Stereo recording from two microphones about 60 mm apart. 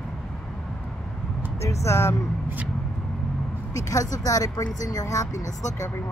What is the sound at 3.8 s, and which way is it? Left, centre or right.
Speech, left.